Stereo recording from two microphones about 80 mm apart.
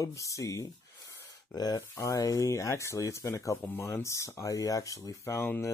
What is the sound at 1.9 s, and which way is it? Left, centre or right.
Speech, left.